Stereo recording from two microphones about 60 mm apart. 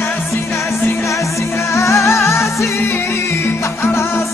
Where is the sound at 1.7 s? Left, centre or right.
Left.